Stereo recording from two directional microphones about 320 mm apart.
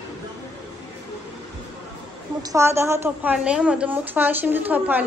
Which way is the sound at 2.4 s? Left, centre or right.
Centre.